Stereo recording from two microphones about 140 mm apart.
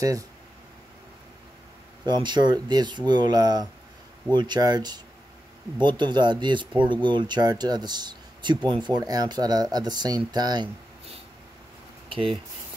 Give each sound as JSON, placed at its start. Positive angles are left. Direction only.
{"t": 2.0, "sound": "speech", "side_deg": -30}
{"t": 12.1, "sound": "speech", "side_deg": -40}